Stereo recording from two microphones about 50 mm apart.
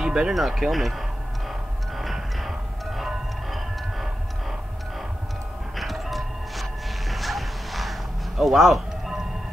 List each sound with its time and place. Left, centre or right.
0.0 s music: centre
0.3 s speech: centre
1.5 s music: centre